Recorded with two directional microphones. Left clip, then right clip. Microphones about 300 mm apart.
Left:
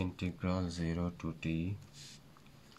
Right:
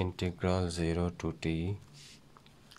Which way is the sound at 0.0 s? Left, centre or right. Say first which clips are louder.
Right 6 dB; right.